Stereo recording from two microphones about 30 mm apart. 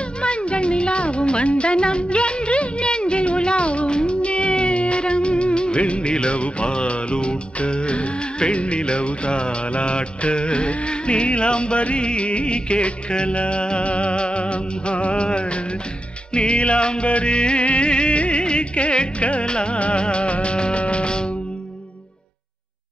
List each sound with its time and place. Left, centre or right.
0.2 s speech: left
16.3 s music: left